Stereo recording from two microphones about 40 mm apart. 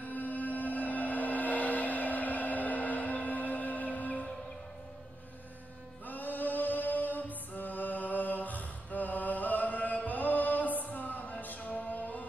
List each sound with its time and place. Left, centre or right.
0.0 s music: left
6.0 s chant: left
11.4 s music: left